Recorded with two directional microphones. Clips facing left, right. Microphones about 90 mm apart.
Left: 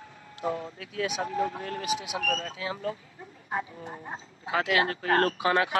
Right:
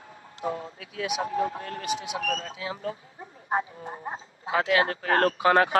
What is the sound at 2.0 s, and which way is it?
Speech, 40° right (ahead or behind).